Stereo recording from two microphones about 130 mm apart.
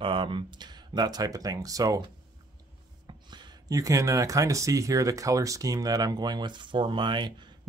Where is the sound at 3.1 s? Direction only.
35° right (ahead or behind).